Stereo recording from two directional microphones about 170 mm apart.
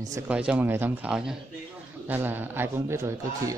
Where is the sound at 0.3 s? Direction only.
5° right (ahead or behind).